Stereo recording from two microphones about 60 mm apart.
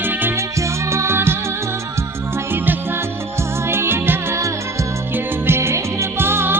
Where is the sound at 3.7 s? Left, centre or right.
Right.